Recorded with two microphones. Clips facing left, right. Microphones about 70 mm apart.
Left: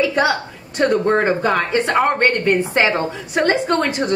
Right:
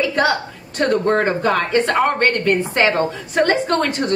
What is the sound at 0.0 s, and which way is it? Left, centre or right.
A woman's voice, centre.